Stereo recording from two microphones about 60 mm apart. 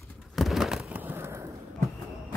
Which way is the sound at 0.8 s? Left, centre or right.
Right.